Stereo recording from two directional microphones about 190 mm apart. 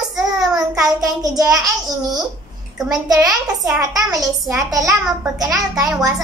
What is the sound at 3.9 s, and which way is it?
A child's voice, 20° right (ahead or behind).